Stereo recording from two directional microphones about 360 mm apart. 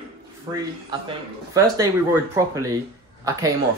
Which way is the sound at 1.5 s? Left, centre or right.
Centre.